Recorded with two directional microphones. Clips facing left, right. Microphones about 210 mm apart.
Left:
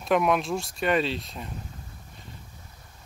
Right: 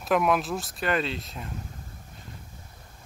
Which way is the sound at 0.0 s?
Centre (ahead or behind).